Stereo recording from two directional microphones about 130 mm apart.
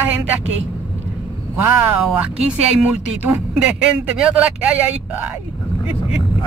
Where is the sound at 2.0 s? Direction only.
5° right (ahead or behind).